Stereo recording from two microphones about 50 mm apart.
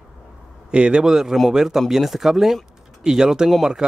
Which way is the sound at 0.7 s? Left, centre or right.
Centre.